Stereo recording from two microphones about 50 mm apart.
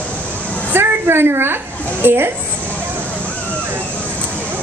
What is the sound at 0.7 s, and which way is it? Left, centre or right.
A woman's voice, right.